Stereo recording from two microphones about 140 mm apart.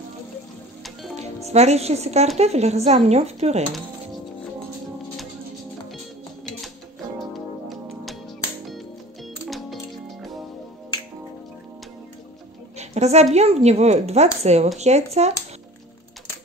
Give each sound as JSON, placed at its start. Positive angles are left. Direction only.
{"t": 1.1, "sound": "a woman's voice", "side_deg": -50}
{"t": 7.7, "sound": "music", "side_deg": 0}
{"t": 9.5, "sound": "music", "side_deg": 0}
{"t": 12.7, "sound": "a woman's voice", "side_deg": -50}